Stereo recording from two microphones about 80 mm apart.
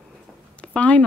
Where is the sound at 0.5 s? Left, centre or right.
Centre.